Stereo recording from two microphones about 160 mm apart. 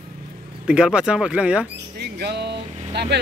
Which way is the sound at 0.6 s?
5° right (ahead or behind).